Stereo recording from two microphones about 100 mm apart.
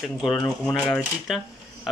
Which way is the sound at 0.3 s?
5° left (ahead or behind).